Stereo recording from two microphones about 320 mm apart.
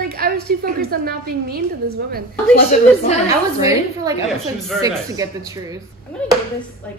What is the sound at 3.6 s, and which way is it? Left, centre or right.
A woman's voice, centre.